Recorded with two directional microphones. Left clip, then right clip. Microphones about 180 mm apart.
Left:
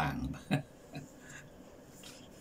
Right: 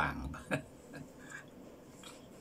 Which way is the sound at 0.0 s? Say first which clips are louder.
Even; 15° left (ahead or behind).